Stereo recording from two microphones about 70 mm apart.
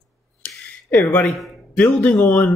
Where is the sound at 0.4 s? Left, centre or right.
Left.